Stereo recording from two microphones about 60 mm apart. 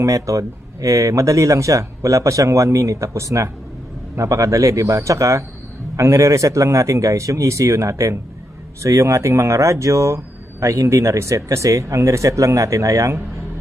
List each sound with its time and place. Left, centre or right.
0.0 s speech: right